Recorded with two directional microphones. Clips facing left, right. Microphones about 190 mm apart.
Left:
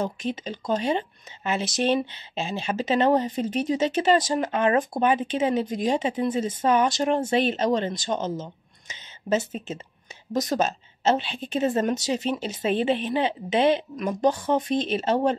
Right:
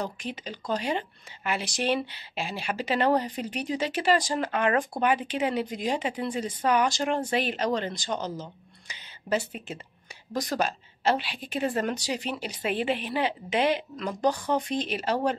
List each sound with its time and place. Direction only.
0.0 s a woman's voice: 20° left (ahead or behind)